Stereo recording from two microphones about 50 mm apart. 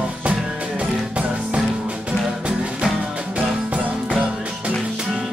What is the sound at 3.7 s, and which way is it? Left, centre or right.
Music, right.